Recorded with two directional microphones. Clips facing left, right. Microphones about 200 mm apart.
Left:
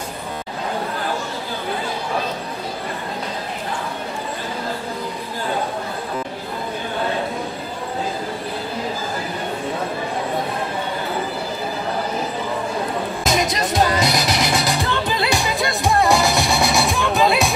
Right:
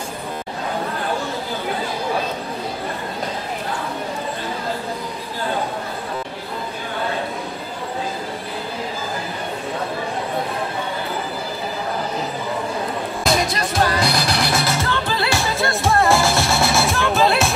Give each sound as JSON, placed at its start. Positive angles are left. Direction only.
{"t": 13.2, "sound": "music", "side_deg": 20}
{"t": 16.5, "sound": "music", "side_deg": 0}